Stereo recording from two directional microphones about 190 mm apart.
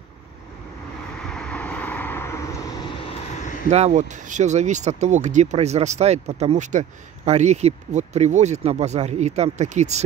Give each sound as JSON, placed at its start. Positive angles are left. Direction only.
{"t": 1.2, "sound": "vehicle", "side_deg": 5}
{"t": 3.7, "sound": "speech", "side_deg": -35}